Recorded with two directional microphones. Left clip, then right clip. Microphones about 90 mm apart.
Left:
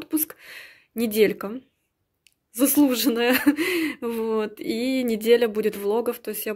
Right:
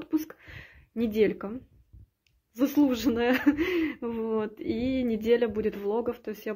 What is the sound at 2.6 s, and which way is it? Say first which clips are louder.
Speech: left 5 dB; 35° left (ahead or behind).